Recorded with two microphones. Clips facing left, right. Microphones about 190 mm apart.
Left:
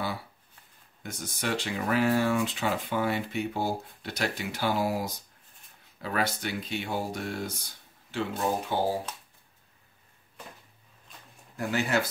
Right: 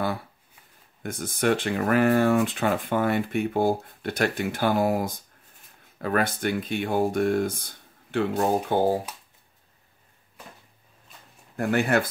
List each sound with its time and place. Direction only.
1.0 s speech: 55° right (ahead or behind)
11.5 s speech: 55° right (ahead or behind)